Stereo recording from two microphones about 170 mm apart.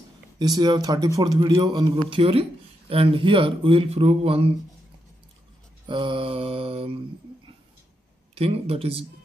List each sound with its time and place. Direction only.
0.4 s a man's voice: 25° right (ahead or behind)
5.9 s speech: 30° right (ahead or behind)
8.4 s speech: 35° right (ahead or behind)